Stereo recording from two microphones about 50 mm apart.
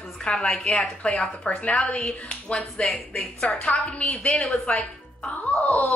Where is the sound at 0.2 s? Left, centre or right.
Centre.